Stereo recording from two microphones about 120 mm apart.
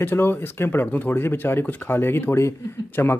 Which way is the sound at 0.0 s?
20° left (ahead or behind).